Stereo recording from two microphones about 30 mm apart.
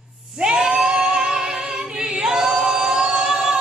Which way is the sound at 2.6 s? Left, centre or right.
Centre.